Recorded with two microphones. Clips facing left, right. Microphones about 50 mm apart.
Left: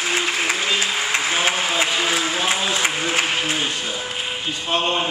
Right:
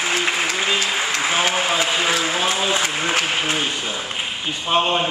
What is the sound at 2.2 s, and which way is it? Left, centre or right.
Applause, centre.